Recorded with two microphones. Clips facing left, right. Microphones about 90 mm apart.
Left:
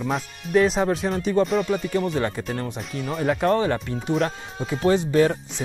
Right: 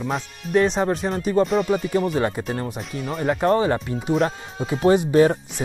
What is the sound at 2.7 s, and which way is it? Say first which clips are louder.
Speech: right 1 dB; centre (ahead or behind).